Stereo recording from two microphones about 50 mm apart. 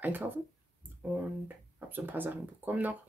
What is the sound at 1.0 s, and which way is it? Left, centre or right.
Speech, right.